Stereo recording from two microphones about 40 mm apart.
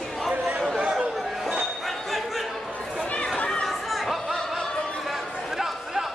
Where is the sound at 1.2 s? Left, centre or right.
Centre.